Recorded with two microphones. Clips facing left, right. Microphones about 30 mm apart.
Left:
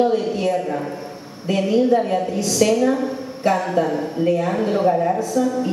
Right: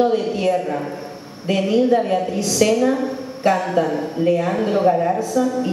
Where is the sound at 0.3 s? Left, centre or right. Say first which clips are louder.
Right 2 dB; right.